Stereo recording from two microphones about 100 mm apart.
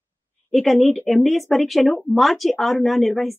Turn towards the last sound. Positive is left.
turn(degrees=0)  # may be behind; listen again after turning